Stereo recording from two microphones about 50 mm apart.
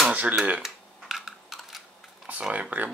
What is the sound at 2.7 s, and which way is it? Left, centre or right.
Speech, right.